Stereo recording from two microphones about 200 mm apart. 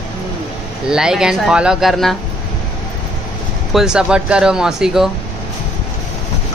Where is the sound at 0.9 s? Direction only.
5° right (ahead or behind).